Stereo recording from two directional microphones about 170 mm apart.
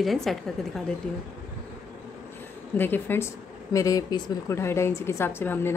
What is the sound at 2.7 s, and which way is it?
A woman's voice, 10° left (ahead or behind).